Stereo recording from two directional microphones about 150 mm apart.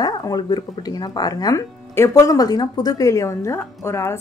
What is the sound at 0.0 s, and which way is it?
Speech, 25° left (ahead or behind).